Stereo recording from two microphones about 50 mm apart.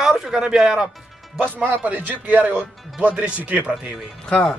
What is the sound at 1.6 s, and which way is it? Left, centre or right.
Speech, right.